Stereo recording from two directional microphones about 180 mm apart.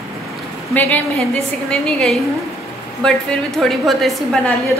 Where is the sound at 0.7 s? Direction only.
10° left (ahead or behind).